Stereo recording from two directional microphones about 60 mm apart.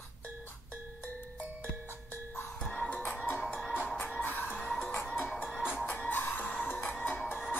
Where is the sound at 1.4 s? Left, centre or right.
Right.